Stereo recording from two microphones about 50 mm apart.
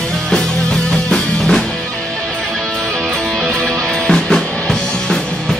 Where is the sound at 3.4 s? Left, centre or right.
Centre.